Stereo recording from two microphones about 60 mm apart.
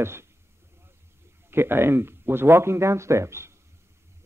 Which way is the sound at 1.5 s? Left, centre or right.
Right.